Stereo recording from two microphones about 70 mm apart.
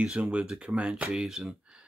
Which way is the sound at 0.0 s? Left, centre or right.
Centre.